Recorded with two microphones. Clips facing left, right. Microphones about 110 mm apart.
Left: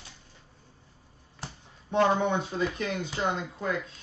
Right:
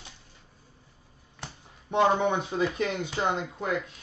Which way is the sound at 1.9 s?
15° right (ahead or behind).